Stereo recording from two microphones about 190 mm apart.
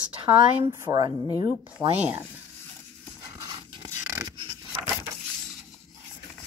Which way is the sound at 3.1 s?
15° right (ahead or behind).